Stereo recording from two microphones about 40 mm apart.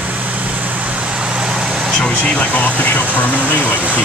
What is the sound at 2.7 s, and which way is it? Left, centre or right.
Speech, left.